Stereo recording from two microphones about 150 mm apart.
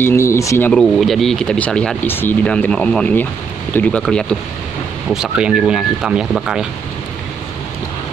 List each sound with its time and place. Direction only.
0.0 s speech: 20° left (ahead or behind)
0.7 s speech: centre (ahead or behind)